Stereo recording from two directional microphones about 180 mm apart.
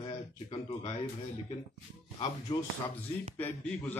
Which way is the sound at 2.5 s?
25° left (ahead or behind).